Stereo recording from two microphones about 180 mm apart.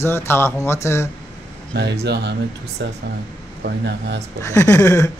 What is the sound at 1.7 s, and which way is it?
Speech, 70° right (ahead or behind).